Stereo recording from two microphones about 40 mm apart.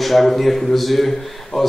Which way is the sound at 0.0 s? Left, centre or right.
Centre.